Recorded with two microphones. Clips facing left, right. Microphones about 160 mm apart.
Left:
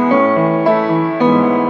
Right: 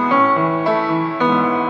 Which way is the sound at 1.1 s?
15° left (ahead or behind).